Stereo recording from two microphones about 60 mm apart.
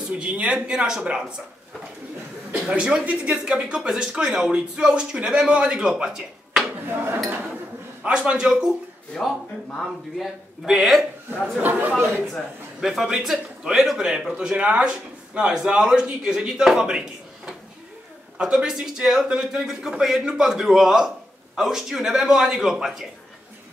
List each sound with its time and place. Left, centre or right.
0.1 s speech: centre
2.7 s speech: centre
8.0 s speech: centre
9.1 s speech: centre
9.8 s a man's voice: centre
11.6 s speech: right
12.8 s speech: centre